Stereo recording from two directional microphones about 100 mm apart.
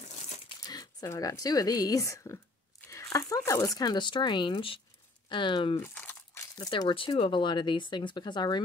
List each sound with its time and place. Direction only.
0.7 s speech: 35° left (ahead or behind); by 5.8 s 55° left (ahead or behind)
5.8 s crumpling: 25° left (ahead or behind)
7.2 s speech: 55° left (ahead or behind)